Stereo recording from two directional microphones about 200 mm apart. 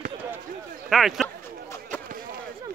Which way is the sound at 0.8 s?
Centre (ahead or behind).